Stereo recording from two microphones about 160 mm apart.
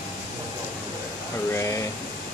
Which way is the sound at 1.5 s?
15° left (ahead or behind).